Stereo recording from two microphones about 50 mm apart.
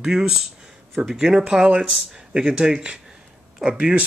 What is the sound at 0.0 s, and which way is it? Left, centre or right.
Speech, centre.